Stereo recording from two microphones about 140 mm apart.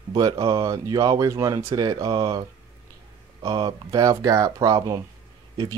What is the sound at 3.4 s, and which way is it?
Speech, 30° right (ahead or behind).